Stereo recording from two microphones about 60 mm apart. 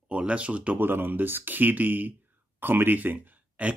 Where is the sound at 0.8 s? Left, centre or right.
Right.